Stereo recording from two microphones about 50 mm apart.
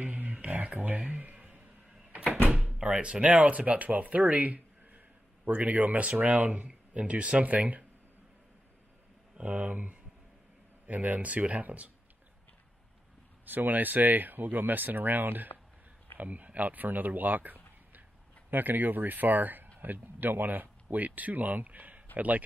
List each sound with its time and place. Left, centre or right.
0.0 s a sound: right
2.5 s speech: centre
9.4 s speech: right
13.5 s a man's voice: right